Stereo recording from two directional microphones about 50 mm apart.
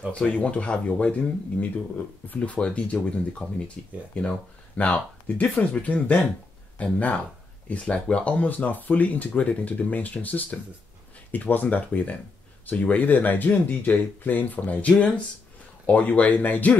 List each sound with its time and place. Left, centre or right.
0.1 s speech: left
7.9 s speech: left